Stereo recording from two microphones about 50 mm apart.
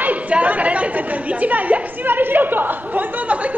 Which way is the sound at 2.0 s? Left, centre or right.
Right.